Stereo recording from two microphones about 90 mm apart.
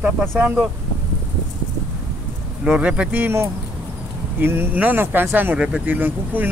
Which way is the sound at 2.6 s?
10° right (ahead or behind).